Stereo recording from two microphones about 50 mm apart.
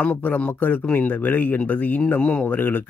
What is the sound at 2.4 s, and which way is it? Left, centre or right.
Speech, left.